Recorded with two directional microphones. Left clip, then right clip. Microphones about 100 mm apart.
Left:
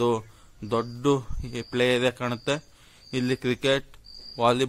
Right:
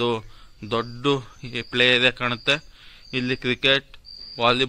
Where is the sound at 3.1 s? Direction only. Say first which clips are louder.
Right 2 dB; 40° left (ahead or behind).